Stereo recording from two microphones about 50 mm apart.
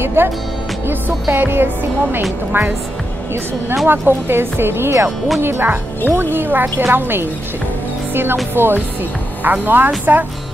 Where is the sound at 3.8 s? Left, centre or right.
Right.